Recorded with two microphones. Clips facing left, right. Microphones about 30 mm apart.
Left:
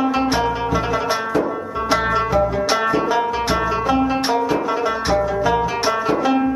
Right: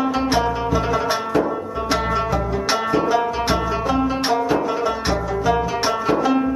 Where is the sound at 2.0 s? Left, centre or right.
Centre.